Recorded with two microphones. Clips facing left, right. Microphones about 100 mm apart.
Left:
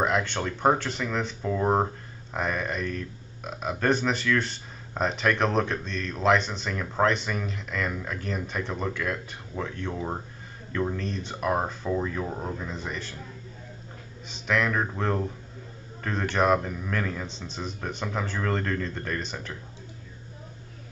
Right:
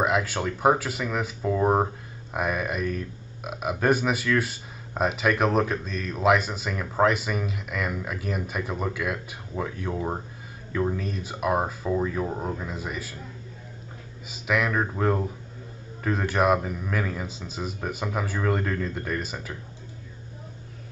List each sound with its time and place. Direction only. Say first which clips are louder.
0.0 s speech: right 1 dB; 5° right (ahead or behind)
14.3 s speech: right 1 dB; 5° right (ahead or behind)